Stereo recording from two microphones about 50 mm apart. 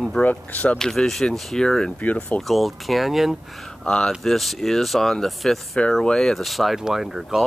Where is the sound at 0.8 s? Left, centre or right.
Centre.